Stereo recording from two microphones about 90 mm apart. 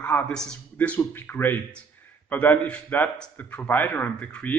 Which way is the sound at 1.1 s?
25° left (ahead or behind).